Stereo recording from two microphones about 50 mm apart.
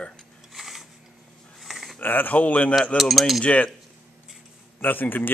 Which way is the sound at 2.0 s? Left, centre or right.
Left.